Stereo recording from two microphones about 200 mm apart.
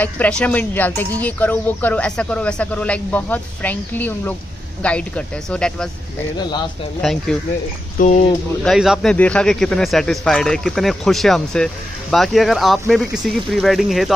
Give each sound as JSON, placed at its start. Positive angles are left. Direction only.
{"t": 0.0, "sound": "a man's voice", "side_deg": 5}
{"t": 6.3, "sound": "speech", "side_deg": 20}
{"t": 7.0, "sound": "a man's voice", "side_deg": 0}
{"t": 8.0, "sound": "speech", "side_deg": 35}
{"t": 8.6, "sound": "a man's voice", "side_deg": -5}